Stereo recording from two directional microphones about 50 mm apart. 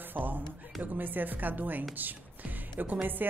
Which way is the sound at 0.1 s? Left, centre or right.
Right.